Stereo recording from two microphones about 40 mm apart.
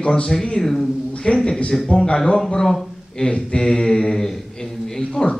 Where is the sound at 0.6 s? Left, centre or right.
Centre.